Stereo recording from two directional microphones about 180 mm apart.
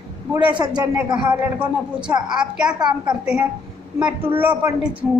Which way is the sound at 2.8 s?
20° right (ahead or behind).